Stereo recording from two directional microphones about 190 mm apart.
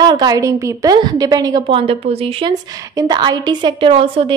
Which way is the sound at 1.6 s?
30° right (ahead or behind).